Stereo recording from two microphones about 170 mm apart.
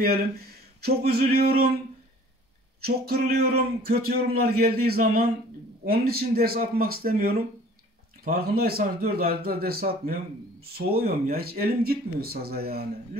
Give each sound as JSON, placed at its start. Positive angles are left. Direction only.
{"t": 0.0, "sound": "speech", "side_deg": -65}
{"t": 2.8, "sound": "a man's voice", "side_deg": -65}